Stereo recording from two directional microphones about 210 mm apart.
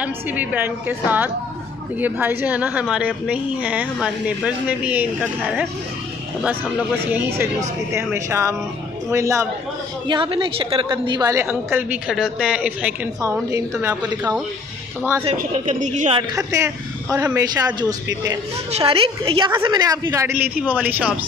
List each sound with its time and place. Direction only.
0.0 s a woman's voice: 5° right (ahead or behind)
15.3 s a woman's voice: 35° right (ahead or behind)
16.2 s a woman's voice: 15° right (ahead or behind)
18.7 s a woman's voice: 25° right (ahead or behind); by 21.1 s 10° right (ahead or behind)